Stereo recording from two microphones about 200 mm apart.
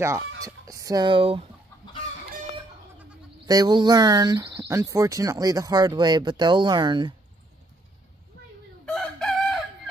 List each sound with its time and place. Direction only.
0.4 s a sound: 15° right (ahead or behind)
3.4 s speech: 20° right (ahead or behind)
8.8 s chicken: 5° left (ahead or behind)